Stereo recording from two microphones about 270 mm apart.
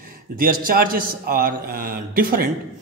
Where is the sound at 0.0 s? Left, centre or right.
Right.